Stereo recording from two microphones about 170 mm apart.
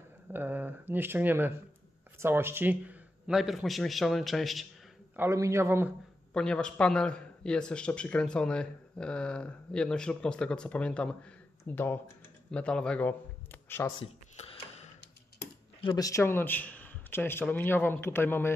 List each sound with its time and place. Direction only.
0.3 s a man's voice: 10° right (ahead or behind)
5.1 s speech: 15° right (ahead or behind)
6.3 s a man's voice: 5° left (ahead or behind)
14.3 s a sound: 40° left (ahead or behind)
15.8 s a man's voice: 25° left (ahead or behind)